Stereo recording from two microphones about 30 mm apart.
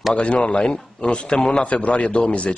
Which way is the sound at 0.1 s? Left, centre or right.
Left.